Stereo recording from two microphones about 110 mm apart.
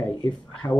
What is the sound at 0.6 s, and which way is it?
Speech, 30° left (ahead or behind).